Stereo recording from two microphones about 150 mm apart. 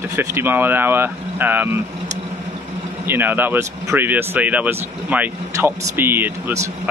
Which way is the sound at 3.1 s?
15° right (ahead or behind).